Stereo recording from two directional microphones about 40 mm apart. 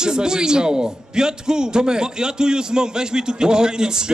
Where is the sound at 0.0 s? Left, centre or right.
Centre.